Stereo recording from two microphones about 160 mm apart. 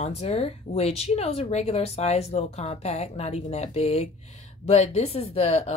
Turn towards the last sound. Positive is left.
turn(degrees=40)  # may be behind; listen again after turning